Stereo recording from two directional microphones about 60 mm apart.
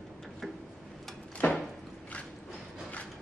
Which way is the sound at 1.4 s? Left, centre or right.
Left.